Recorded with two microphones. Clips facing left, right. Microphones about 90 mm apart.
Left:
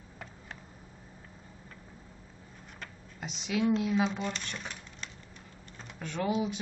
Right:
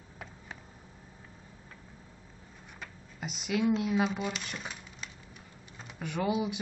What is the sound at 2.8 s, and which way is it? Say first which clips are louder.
Speech: right 1 dB; 5° right (ahead or behind).